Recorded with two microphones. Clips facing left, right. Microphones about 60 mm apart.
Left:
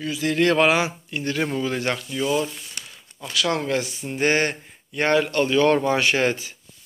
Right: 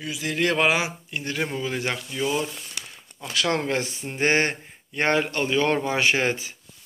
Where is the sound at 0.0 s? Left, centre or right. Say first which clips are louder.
Left 4 dB; centre.